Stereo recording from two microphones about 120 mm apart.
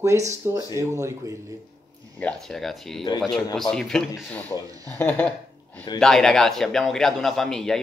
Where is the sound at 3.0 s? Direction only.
30° left (ahead or behind).